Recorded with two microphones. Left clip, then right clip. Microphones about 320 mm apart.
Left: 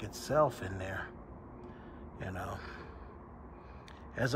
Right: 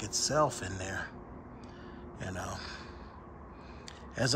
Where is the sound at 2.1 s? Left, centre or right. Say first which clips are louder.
Right 1 dB; centre.